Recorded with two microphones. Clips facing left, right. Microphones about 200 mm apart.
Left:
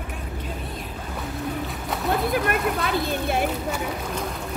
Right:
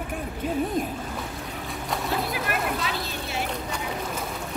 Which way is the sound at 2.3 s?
55° left (ahead or behind).